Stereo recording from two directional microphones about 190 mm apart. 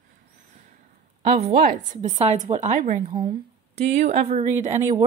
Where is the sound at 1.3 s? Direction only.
35° right (ahead or behind).